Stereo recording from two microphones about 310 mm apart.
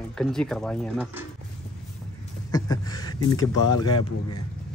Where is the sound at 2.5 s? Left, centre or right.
Centre.